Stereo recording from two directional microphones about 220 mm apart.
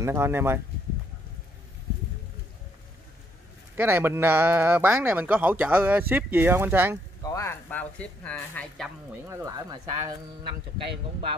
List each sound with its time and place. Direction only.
0.0 s speech: 10° right (ahead or behind)
3.7 s speech: 10° right (ahead or behind)
7.2 s speech: 15° left (ahead or behind)
9.3 s speech: 15° right (ahead or behind)